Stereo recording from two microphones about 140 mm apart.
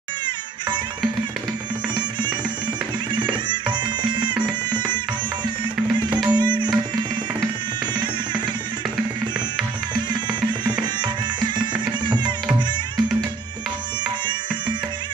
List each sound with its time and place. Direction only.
3.2 s music: 35° right (ahead or behind)
10.6 s music: 30° right (ahead or behind)